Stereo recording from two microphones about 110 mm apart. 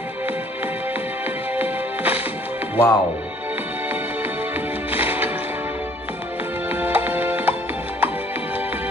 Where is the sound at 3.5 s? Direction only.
15° right (ahead or behind).